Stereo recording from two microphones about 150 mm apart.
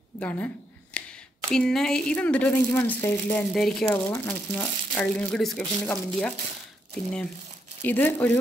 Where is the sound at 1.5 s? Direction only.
5° left (ahead or behind).